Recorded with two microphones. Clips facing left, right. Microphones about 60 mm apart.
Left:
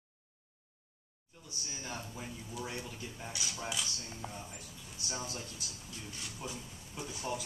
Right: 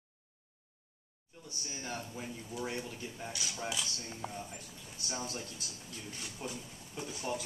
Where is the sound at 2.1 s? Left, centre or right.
Centre.